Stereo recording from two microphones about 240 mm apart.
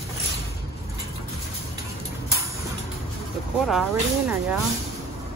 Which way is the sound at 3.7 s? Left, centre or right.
Centre.